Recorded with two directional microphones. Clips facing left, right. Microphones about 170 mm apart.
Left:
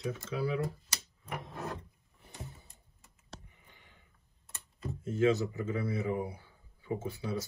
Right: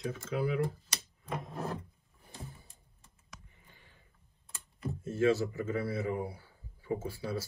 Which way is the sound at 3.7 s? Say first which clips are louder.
Even; 20° left (ahead or behind).